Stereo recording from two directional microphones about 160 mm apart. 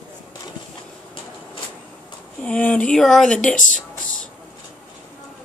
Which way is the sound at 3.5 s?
55° left (ahead or behind).